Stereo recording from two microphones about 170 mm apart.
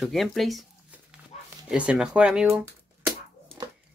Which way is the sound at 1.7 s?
5° right (ahead or behind).